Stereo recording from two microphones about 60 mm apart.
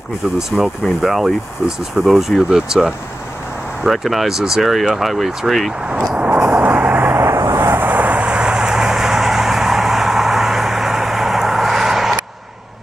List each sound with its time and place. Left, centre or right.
0.5 s speech: centre
1.0 s speech: centre
6.1 s vehicle: right
7.5 s vehicle: right; by 12.2 s centre